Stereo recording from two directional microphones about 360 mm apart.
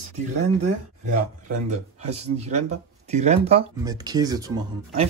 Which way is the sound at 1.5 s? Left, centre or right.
Centre.